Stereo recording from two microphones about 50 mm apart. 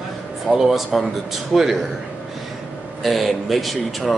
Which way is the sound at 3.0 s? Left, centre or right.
Centre.